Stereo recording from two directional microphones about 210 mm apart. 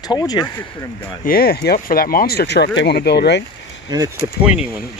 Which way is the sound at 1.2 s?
45° left (ahead or behind).